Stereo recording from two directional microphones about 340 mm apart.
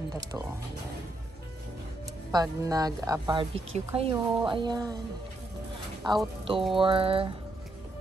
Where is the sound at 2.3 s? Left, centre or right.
Centre.